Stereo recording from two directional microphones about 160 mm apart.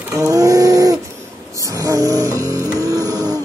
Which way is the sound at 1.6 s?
20° right (ahead or behind).